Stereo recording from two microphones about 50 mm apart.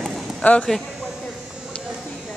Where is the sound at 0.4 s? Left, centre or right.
Left.